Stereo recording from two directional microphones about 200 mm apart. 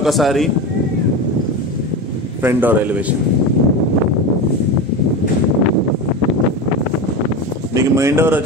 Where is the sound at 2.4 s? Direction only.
10° right (ahead or behind).